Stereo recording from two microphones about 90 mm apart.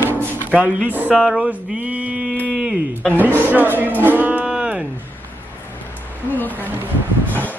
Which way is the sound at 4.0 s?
20° right (ahead or behind).